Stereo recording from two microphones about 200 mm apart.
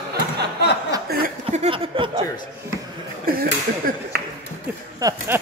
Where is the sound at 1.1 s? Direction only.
45° right (ahead or behind).